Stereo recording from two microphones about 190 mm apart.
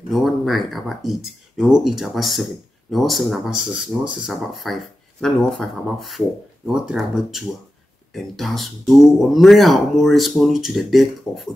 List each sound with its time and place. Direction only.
0.1 s speech: centre (ahead or behind)